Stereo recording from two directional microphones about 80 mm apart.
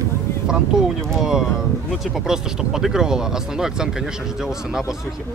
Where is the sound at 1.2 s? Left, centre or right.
Centre.